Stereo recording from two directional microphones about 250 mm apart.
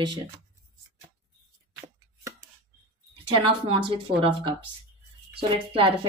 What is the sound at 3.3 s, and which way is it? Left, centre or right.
Speech, right.